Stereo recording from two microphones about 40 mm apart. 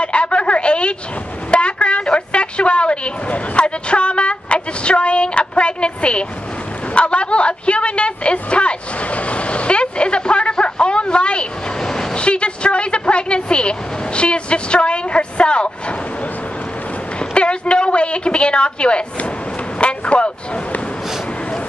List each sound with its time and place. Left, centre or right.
0.0 s a sound: left
11.8 s vehicle: centre
12.2 s a woman's voice: left
17.2 s a woman's voice: left